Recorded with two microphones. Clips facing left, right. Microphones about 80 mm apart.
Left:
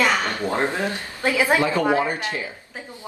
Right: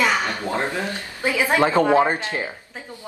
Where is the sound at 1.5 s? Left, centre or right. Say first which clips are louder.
Right 3 dB; right.